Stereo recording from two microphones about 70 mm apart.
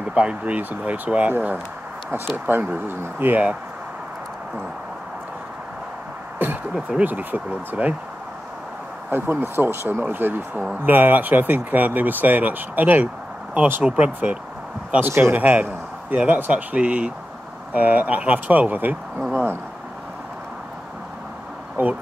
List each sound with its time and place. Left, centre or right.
0.1 s speech: centre
6.3 s a sound: right
6.7 s speech: centre
7.1 s speech: right
9.1 s speech: right
15.0 s a man's voice: right
21.8 s speech: right